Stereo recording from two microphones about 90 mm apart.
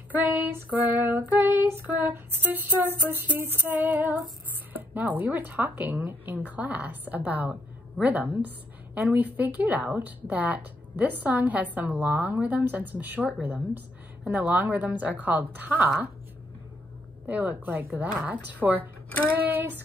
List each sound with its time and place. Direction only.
0.1 s a woman's voice: 20° right (ahead or behind)
17.3 s a woman's voice: 20° right (ahead or behind)
19.0 s child singing: 15° left (ahead or behind)
19.3 s a woman's voice: 20° right (ahead or behind)